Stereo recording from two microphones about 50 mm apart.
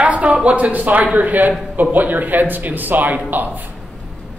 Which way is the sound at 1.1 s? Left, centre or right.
Right.